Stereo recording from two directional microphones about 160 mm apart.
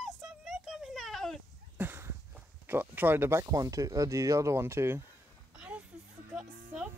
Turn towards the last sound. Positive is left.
turn(degrees=-5)  # may be behind; listen again after turning